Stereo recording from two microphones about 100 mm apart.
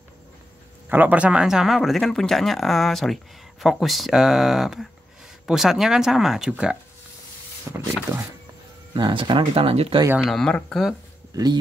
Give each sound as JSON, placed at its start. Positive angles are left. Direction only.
{"t": 0.8, "sound": "speech", "side_deg": -20}
{"t": 7.7, "sound": "speech", "side_deg": -30}
{"t": 8.9, "sound": "speech", "side_deg": -55}
{"t": 9.6, "sound": "speech", "side_deg": -75}
{"t": 10.2, "sound": "speech", "side_deg": 5}